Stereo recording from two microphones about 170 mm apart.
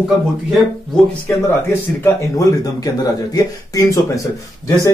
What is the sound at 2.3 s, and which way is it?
Speech, 20° left (ahead or behind).